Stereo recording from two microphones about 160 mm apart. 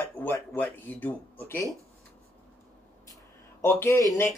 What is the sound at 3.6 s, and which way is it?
Speech, 15° left (ahead or behind).